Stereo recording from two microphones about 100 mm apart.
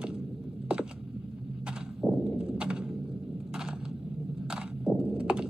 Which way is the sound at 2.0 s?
5° right (ahead or behind).